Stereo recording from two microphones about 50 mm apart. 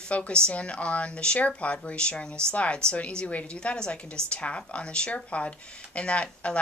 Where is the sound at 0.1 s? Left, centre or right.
Left.